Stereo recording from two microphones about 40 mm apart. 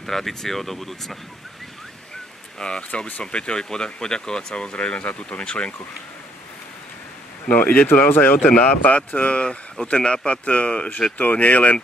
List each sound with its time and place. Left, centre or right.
0.0 s speech: centre
2.6 s speech: centre
4.7 s speech: left
7.4 s speech: left
8.5 s speech: left
11.1 s speech: left